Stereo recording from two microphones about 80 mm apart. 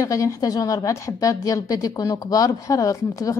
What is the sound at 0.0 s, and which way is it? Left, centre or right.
A woman's voice, left.